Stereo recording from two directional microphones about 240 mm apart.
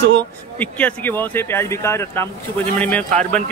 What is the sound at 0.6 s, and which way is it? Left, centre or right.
Speech, centre.